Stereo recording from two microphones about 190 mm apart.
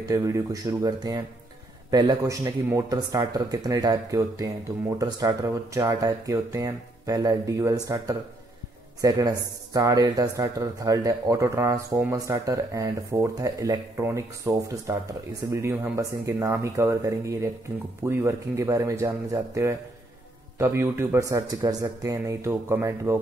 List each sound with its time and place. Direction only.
0.1 s speech: 20° right (ahead or behind)